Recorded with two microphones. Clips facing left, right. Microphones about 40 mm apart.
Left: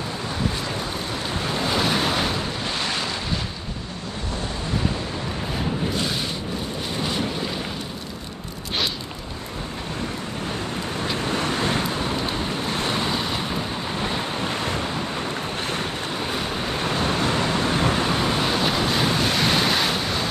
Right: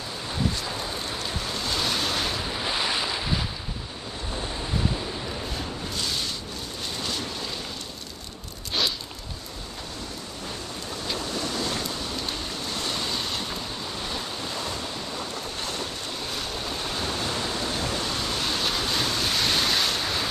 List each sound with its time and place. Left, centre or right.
1.4 s waves: left; by 2.5 s centre
2.6 s wind noise: centre
5.5 s a sound: left
7.0 s vehicle: left
11.1 s vehicle: left
12.3 s waves: left; by 20.2 s centre